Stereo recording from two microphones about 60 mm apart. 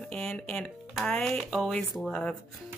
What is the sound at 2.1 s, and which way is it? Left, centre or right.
Speech, centre.